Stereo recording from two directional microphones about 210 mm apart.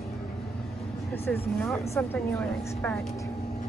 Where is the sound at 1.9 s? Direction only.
10° left (ahead or behind).